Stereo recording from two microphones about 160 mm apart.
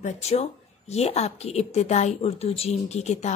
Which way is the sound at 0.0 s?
40° left (ahead or behind).